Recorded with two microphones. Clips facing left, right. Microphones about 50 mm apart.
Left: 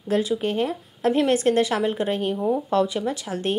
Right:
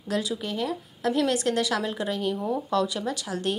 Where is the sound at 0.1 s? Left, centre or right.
Left.